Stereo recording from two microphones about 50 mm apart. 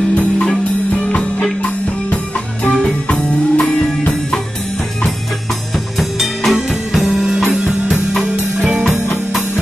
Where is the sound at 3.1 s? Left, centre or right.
Centre.